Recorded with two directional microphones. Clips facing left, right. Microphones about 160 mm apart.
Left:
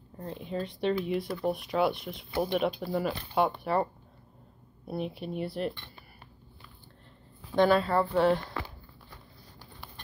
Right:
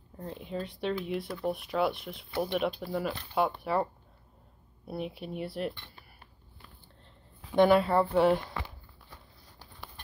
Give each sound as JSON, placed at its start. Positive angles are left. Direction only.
{"t": 0.2, "sound": "speech", "side_deg": 0}
{"t": 7.5, "sound": "speech", "side_deg": -15}
{"t": 8.1, "sound": "speech", "side_deg": -5}